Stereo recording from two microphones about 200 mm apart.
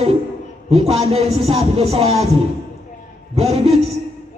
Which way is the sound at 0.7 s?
30° right (ahead or behind).